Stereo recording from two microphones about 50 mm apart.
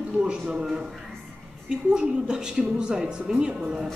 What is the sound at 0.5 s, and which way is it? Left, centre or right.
A woman's voice, centre.